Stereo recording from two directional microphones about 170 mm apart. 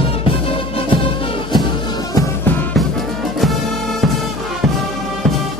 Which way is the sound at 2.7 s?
Centre (ahead or behind).